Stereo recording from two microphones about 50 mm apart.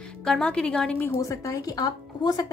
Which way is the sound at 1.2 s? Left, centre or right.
Left.